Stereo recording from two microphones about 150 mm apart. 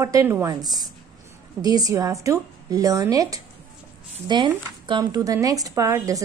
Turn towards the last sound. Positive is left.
turn(degrees=-20)  # may be behind; listen again after turning